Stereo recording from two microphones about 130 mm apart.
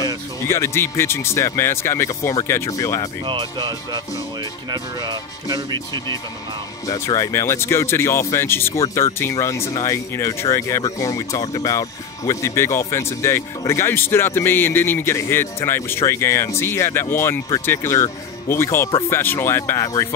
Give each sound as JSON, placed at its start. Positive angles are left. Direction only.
{"t": 0.0, "sound": "speech", "side_deg": 20}
{"t": 3.3, "sound": "speech", "side_deg": -35}
{"t": 6.9, "sound": "speech", "side_deg": 25}